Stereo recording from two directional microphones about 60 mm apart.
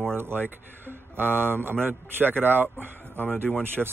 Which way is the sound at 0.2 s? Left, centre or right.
Right.